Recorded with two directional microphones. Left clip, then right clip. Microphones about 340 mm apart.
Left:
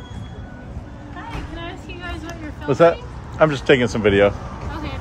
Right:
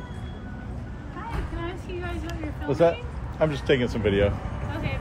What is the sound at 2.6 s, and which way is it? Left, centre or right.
Speech, left.